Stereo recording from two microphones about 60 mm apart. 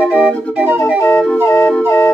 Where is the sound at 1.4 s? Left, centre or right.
Left.